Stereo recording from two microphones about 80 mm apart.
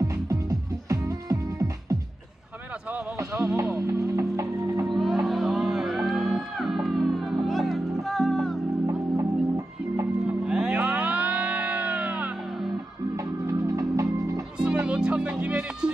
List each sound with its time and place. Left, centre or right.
0.0 s music: right
3.2 s music: right
4.8 s music: centre
9.1 s music: right
10.4 s music: centre
13.1 s music: right
14.9 s music: centre